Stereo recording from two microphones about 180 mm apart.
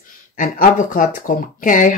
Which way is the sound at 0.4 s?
50° left (ahead or behind).